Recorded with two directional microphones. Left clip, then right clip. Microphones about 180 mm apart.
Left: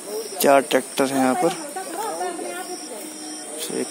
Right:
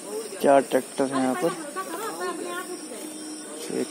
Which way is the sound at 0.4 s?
10° left (ahead or behind).